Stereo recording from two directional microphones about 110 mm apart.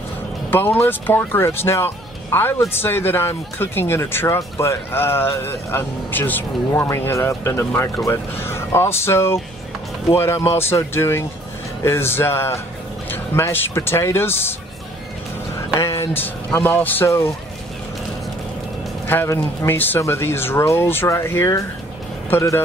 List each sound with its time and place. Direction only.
0.5 s speech: 20° left (ahead or behind)
15.7 s speech: 25° left (ahead or behind)
19.0 s speech: 20° left (ahead or behind)